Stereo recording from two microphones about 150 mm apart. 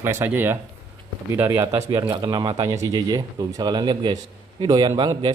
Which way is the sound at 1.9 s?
25° right (ahead or behind).